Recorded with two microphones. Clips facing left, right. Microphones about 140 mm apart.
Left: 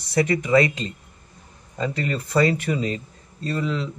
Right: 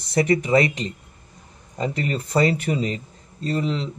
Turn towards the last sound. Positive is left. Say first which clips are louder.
# right 1 dB
turn(degrees=-25)  # may be behind; listen again after turning